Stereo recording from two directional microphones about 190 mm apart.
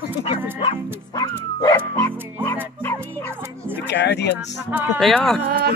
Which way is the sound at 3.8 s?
65° left (ahead or behind).